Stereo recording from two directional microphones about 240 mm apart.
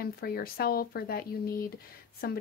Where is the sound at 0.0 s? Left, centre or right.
Left.